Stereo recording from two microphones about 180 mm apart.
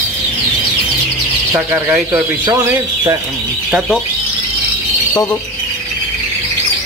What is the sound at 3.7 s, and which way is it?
Speech, centre (ahead or behind).